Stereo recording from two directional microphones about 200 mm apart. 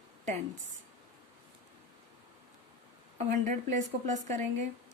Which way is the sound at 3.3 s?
40° right (ahead or behind).